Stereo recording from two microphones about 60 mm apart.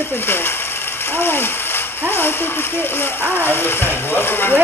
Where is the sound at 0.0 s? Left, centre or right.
Left.